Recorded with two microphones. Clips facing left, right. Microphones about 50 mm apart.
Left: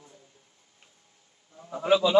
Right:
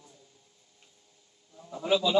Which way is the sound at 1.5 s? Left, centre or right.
Left.